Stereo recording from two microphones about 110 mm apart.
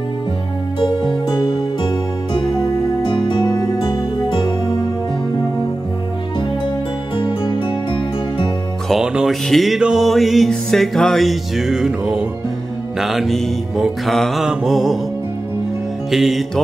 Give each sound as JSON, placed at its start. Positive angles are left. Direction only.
{"t": 0.7, "sound": "music", "side_deg": 40}
{"t": 7.2, "sound": "music", "side_deg": 50}
{"t": 8.8, "sound": "music", "side_deg": -5}
{"t": 16.1, "sound": "music", "side_deg": 0}